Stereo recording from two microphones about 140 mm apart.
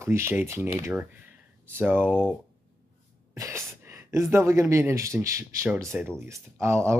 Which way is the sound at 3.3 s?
20° right (ahead or behind).